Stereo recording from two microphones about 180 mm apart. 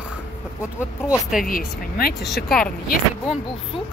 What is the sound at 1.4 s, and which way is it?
Speech, 55° left (ahead or behind).